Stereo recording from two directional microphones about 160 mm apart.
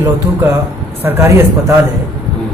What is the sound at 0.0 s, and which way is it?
Speech, 10° right (ahead or behind).